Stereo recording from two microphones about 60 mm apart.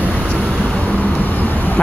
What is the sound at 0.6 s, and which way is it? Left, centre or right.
Vehicle, left.